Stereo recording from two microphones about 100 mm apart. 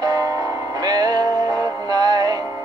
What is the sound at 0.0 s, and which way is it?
Music, 40° right (ahead or behind).